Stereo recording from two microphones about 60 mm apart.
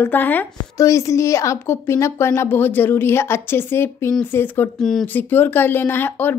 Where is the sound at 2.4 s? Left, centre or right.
Left.